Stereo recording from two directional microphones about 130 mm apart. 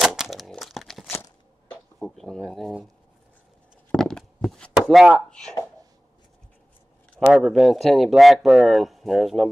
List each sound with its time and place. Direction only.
0.0 s a sound: 5° right (ahead or behind)
3.9 s chop: 5° left (ahead or behind)
5.1 s speech: 5° left (ahead or behind)
7.2 s speech: 5° right (ahead or behind)